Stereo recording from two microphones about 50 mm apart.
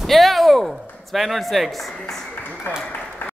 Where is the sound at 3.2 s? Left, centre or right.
Left.